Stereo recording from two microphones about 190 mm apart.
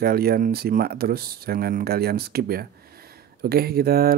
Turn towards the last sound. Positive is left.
turn(degrees=-50)  # may be behind; listen again after turning